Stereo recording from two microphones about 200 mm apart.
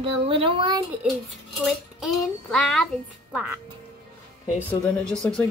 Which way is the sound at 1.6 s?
Centre (ahead or behind).